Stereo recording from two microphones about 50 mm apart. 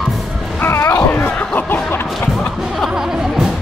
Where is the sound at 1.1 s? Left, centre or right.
Left.